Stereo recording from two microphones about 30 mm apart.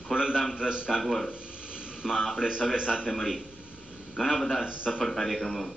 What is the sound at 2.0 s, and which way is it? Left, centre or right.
Speech, centre.